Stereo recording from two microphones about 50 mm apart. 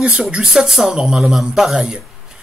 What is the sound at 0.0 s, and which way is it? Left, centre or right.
Speech, centre.